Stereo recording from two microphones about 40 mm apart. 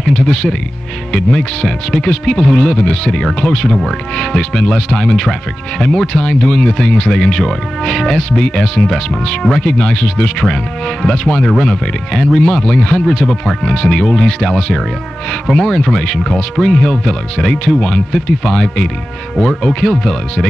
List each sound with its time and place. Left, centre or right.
0.1 s speech: centre
8.2 s speech: left